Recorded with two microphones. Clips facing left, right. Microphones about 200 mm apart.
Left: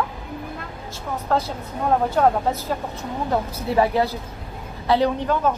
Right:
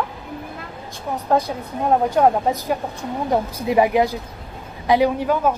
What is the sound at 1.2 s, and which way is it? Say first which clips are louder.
A man's voice: right 4 dB; 15° right (ahead or behind).